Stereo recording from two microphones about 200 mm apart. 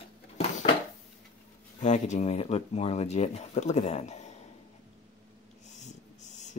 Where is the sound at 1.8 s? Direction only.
35° left (ahead or behind).